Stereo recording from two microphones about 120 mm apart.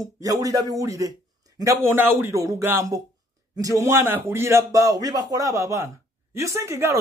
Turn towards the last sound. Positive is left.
turn(degrees=-25)  # may be behind; listen again after turning